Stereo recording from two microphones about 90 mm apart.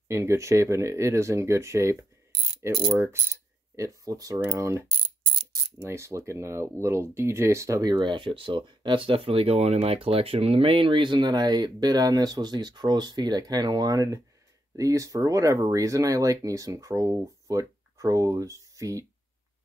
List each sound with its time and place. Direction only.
0.1 s speech: 35° right (ahead or behind)
2.9 s coin: 30° right (ahead or behind)
3.7 s speech: 40° right (ahead or behind)
7.8 s speech: 60° right (ahead or behind); by 19.0 s 40° right (ahead or behind)